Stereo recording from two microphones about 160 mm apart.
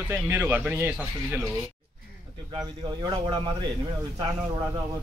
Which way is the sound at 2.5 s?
25° right (ahead or behind).